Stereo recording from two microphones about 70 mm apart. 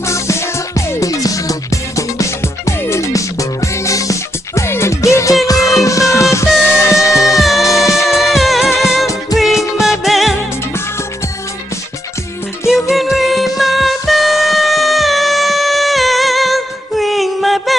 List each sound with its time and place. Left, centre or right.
0.0 s music: left
7.4 s music: centre
12.6 s music: centre